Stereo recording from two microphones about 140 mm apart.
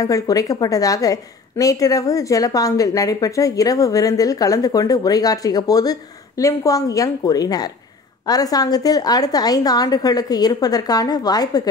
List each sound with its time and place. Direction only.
0.0 s a woman's voice: 25° left (ahead or behind)